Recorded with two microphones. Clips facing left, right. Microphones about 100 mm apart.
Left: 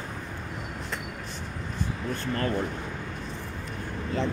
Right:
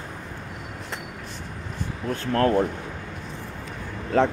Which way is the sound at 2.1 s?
75° right (ahead or behind).